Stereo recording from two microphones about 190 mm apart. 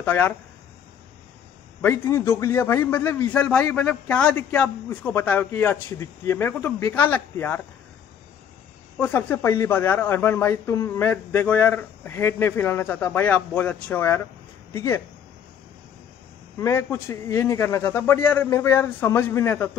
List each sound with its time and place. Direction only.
0.0 s speech: 10° left (ahead or behind)
1.8 s a man's voice: 15° left (ahead or behind)
8.9 s a man's voice: 10° left (ahead or behind)
16.5 s a man's voice: 15° left (ahead or behind)